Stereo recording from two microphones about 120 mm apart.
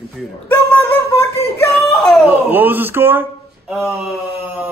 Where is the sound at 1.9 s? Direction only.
Centre (ahead or behind).